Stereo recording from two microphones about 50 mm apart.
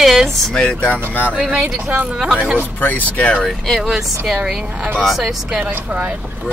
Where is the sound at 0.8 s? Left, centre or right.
Left.